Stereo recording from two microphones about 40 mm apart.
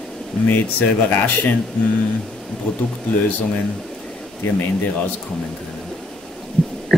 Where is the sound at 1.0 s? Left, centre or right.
Left.